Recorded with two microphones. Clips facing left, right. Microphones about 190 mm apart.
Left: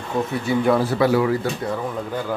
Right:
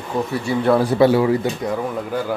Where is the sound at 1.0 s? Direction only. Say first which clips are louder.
Right 3 dB; 25° right (ahead or behind); by 2.3 s 10° right (ahead or behind).